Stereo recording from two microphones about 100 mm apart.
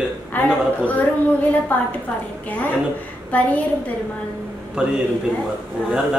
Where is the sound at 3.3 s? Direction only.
15° left (ahead or behind).